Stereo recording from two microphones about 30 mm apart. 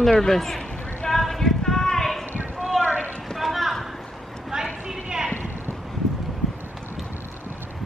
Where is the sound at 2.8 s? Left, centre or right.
Right.